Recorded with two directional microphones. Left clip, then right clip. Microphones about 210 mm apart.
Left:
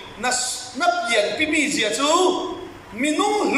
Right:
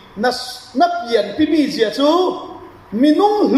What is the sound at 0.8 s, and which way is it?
Speech, 40° right (ahead or behind).